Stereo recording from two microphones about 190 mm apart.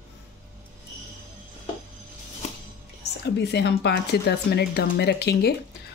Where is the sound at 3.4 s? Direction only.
65° left (ahead or behind).